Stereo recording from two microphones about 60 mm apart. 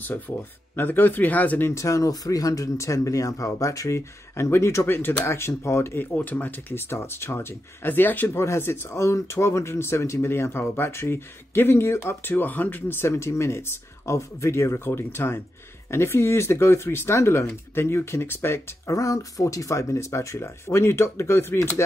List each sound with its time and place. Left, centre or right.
0.3 s speech: left
0.7 s speech: left
1.7 s speech: left
6.1 s speech: left
8.4 s speech: left
18.9 s speech: left